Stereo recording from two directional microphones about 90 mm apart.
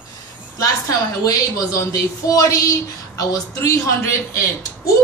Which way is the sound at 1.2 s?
40° left (ahead or behind).